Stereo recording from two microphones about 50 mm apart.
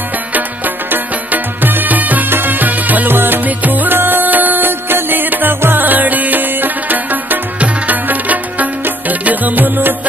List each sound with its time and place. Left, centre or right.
0.8 s music: right